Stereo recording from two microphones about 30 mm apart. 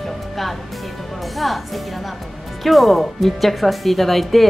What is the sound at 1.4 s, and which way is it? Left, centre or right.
Speech, centre.